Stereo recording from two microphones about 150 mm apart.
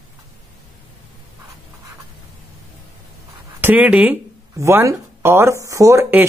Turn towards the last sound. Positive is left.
turn(degrees=-15)  # may be behind; listen again after turning